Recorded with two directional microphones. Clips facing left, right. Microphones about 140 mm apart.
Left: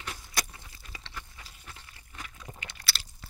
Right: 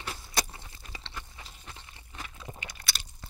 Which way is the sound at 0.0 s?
30° right (ahead or behind).